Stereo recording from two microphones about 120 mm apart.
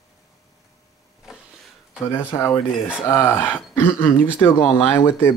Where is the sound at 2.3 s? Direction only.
20° left (ahead or behind).